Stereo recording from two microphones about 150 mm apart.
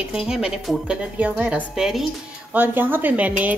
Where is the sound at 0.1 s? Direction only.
5° right (ahead or behind).